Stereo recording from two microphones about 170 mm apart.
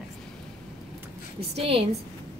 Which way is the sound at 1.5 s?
35° right (ahead or behind).